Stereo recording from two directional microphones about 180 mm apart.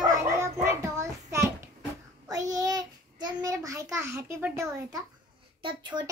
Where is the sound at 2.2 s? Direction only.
20° right (ahead or behind).